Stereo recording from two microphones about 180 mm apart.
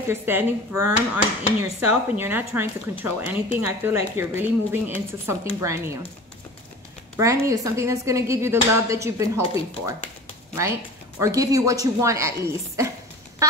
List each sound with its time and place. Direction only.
0.1 s speech: 10° right (ahead or behind)
7.4 s speech: 15° right (ahead or behind)
10.5 s speech: 15° right (ahead or behind)